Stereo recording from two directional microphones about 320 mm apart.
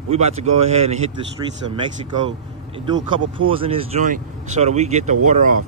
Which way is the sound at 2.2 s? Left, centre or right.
Centre.